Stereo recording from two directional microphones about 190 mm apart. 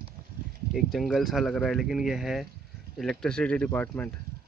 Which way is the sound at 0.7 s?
Centre (ahead or behind).